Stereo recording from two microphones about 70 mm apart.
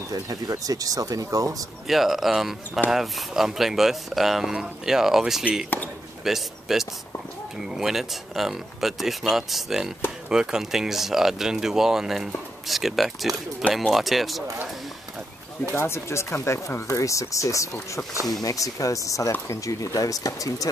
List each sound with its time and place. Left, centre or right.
0.1 s speech: right
1.9 s speech: centre
15.7 s speech: left